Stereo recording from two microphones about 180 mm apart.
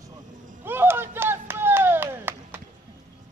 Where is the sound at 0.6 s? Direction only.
10° right (ahead or behind).